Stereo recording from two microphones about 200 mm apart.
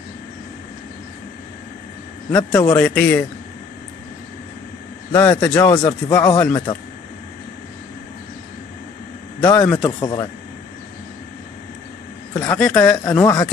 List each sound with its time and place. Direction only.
2.3 s a man's voice: 15° left (ahead or behind)
5.1 s a man's voice: 10° left (ahead or behind)
9.4 s a man's voice: 15° left (ahead or behind)
12.4 s speech: 5° left (ahead or behind)
13.1 s a man's voice: 15° left (ahead or behind)